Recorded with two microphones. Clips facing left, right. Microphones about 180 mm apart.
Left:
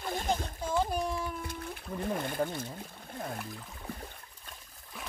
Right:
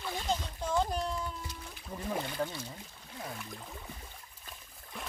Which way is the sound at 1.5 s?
50° left (ahead or behind).